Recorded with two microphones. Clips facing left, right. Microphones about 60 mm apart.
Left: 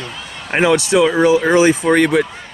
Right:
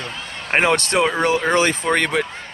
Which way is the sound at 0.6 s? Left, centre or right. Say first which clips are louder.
Left 7 dB; right.